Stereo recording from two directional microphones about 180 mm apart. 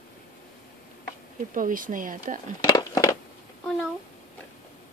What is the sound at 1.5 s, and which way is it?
Speech, 50° right (ahead or behind).